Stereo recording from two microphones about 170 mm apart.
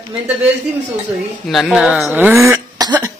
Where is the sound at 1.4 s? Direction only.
Centre (ahead or behind); by 2.9 s 20° right (ahead or behind).